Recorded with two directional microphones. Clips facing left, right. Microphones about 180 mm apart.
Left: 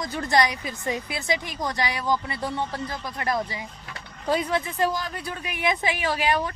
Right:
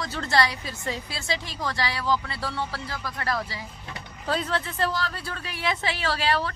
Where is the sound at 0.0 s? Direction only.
15° left (ahead or behind).